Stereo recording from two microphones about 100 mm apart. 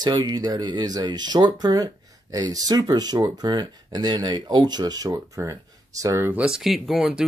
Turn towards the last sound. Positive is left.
turn(degrees=-5)  # may be behind; listen again after turning